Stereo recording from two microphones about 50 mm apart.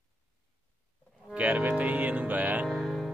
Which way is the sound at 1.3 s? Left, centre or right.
Right.